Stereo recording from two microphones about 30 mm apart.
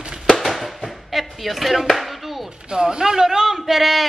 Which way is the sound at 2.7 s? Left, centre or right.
Right.